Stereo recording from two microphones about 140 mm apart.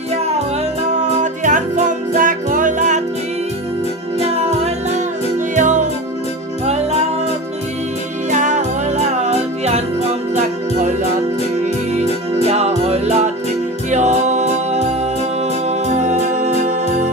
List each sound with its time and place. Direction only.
0.9 s music: 60° right (ahead or behind)
5.5 s music: 60° right (ahead or behind)
6.6 s music: 50° right (ahead or behind)
8.3 s music: 65° right (ahead or behind)
12.4 s music: 50° right (ahead or behind)
15.9 s music: 60° right (ahead or behind)